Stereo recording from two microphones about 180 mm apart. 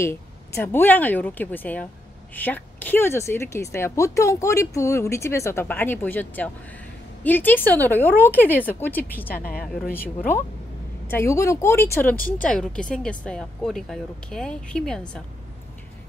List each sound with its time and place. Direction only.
0.0 s speech: 15° left (ahead or behind)